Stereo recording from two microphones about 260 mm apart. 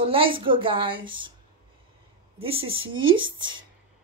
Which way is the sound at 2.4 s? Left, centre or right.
Right.